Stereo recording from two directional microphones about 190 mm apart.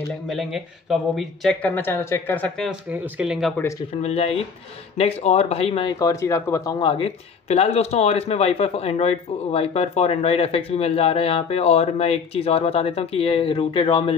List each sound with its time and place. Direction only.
0.3 s speech: centre (ahead or behind)
2.9 s speech: 5° right (ahead or behind)
4.0 s speech: 30° left (ahead or behind)
5.9 s speech: 15° left (ahead or behind)
6.8 s speech: 30° left (ahead or behind)